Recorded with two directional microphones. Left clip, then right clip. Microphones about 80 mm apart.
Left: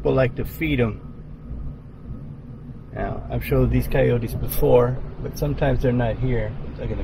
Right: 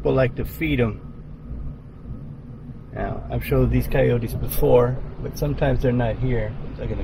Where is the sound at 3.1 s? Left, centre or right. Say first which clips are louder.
Even; centre.